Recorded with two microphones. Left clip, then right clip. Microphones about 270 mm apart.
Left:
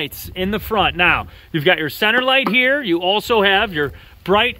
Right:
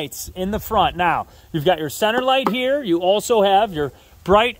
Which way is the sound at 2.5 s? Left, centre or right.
Centre.